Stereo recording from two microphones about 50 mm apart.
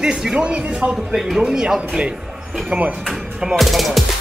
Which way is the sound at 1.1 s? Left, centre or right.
Centre.